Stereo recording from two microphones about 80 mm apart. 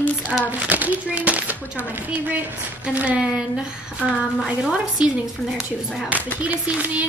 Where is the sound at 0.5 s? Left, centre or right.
Centre.